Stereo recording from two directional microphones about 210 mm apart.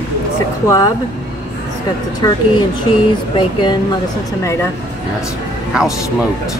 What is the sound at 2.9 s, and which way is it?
Speech, 20° left (ahead or behind).